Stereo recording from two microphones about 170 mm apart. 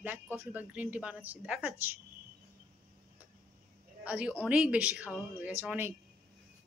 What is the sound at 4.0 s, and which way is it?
A woman's voice, 5° right (ahead or behind).